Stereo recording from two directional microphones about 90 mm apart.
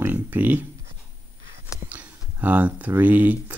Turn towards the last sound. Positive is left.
turn(degrees=-20)  # may be behind; listen again after turning